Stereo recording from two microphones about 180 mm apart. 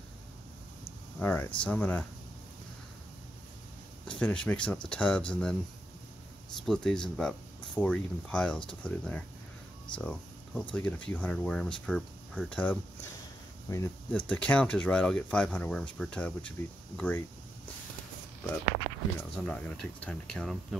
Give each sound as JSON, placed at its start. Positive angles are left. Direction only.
{"t": 1.2, "sound": "speech", "side_deg": 10}
{"t": 4.0, "sound": "speech", "side_deg": 5}
{"t": 6.6, "sound": "speech", "side_deg": 5}
{"t": 14.2, "sound": "speech", "side_deg": 5}
{"t": 19.4, "sound": "speech", "side_deg": 5}